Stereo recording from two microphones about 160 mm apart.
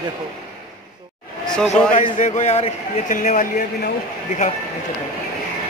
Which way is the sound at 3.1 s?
55° left (ahead or behind).